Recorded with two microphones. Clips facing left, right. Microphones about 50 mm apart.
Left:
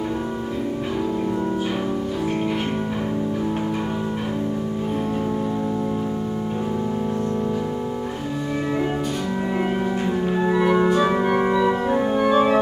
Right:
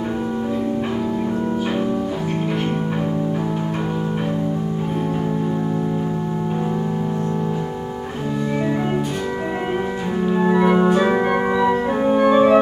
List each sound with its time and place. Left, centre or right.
10.4 s organ: centre
12.2 s music: centre